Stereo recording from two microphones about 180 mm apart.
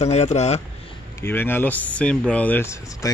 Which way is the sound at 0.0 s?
35° left (ahead or behind).